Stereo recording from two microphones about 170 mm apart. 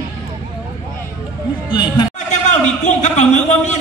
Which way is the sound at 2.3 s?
45° left (ahead or behind).